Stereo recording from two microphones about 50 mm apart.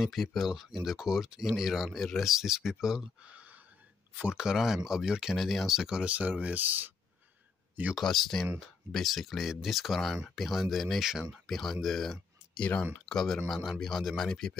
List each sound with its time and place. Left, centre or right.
0.0 s speech: centre
2.2 s speech: centre
3.3 s a sound: right
4.3 s speech: centre
5.4 s speech: centre
6.1 s speech: right
8.0 s speech: centre
10.1 s speech: centre
11.5 s speech: centre
12.5 s speech: left
13.0 s speech: centre